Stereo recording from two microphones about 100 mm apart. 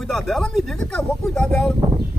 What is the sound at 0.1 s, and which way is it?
Speech, centre (ahead or behind).